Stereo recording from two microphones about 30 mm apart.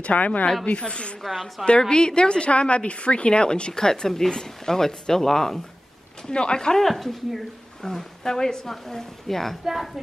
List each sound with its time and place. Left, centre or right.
0.0 s a woman's voice: left
0.7 s speech: left
1.2 s speech: centre
1.8 s speech: left
3.7 s a woman's voice: left
6.3 s a woman's voice: left
6.8 s speech: centre
7.8 s a woman's voice: centre
9.7 s a woman's voice: centre